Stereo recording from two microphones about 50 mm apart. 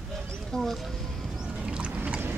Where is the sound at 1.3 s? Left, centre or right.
Centre.